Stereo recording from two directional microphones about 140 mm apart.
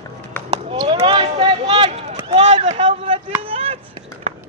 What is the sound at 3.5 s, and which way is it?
Chop, 40° right (ahead or behind).